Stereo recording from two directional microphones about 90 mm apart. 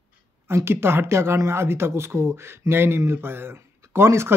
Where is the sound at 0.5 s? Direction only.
30° right (ahead or behind).